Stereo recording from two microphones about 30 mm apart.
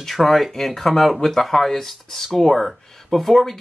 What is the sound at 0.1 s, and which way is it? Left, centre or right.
Speech, centre.